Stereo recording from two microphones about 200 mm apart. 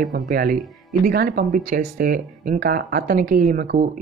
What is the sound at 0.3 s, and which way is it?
Speech, 40° right (ahead or behind).